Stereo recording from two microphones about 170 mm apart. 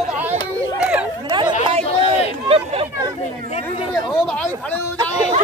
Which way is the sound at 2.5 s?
35° right (ahead or behind).